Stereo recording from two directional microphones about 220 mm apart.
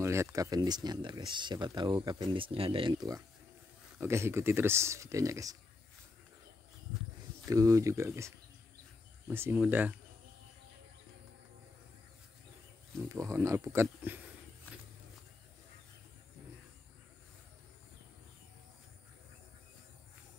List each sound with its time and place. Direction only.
0.0 s speech: 15° right (ahead or behind)
7.4 s speech: 15° right (ahead or behind)
9.3 s speech: 10° right (ahead or behind)
13.1 s speech: 15° right (ahead or behind)